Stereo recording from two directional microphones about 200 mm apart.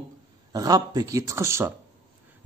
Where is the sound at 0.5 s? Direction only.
20° right (ahead or behind).